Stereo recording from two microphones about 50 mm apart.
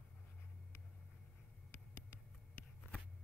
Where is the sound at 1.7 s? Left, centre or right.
Left.